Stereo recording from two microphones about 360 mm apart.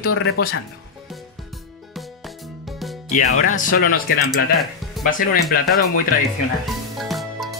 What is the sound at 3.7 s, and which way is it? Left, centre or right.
Speech, left.